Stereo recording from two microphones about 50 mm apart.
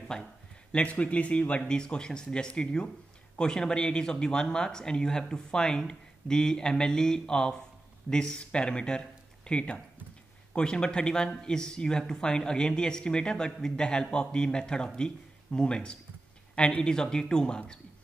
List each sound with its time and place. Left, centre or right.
0.1 s speech: centre
1.7 s speech: centre